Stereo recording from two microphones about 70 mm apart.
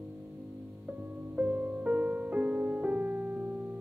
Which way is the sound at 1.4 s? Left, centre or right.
Centre.